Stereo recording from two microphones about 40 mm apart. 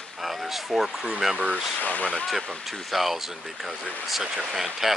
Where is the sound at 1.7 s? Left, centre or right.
Left.